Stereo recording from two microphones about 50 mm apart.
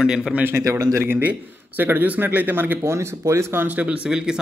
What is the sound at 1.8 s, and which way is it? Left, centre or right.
Speech, right.